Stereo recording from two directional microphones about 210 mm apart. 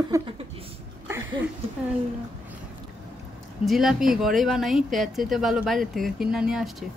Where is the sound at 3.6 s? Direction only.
Centre (ahead or behind).